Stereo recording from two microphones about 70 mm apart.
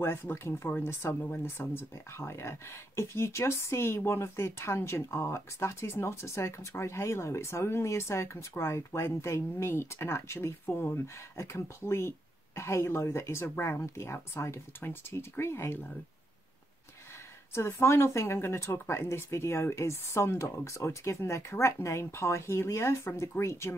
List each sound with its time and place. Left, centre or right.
0.0 s speech: left
17.5 s speech: left